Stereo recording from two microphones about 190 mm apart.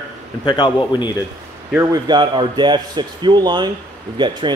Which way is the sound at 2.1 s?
25° right (ahead or behind).